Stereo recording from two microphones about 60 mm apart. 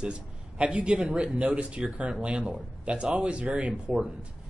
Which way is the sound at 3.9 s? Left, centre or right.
Centre.